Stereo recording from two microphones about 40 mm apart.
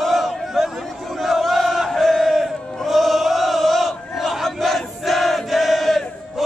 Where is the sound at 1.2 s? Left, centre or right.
Centre.